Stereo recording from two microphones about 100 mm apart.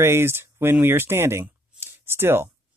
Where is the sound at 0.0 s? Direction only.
25° right (ahead or behind).